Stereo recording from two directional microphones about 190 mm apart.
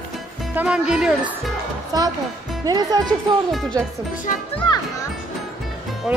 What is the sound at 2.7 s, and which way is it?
Speech, 20° right (ahead or behind).